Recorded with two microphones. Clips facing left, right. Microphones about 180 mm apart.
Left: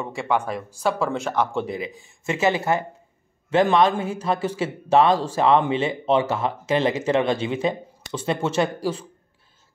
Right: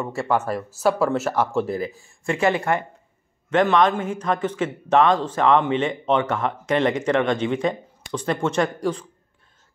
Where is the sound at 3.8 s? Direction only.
10° left (ahead or behind).